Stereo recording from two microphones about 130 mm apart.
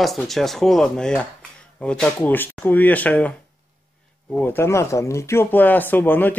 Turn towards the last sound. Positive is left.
turn(degrees=15)  # may be behind; listen again after turning